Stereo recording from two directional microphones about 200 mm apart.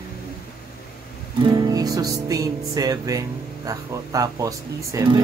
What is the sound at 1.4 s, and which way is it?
Speech, 20° right (ahead or behind).